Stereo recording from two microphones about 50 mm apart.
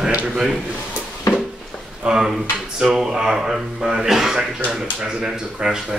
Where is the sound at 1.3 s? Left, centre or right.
Left.